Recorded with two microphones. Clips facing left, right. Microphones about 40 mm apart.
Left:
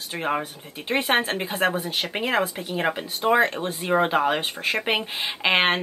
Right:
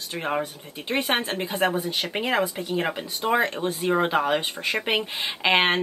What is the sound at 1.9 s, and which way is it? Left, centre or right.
Speech, centre.